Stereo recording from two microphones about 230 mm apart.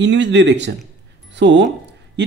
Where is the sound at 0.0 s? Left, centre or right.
Right.